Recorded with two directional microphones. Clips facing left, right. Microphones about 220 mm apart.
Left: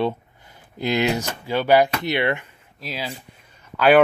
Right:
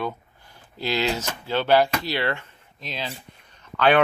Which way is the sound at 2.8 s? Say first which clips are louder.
Left 2 dB; 10° left (ahead or behind).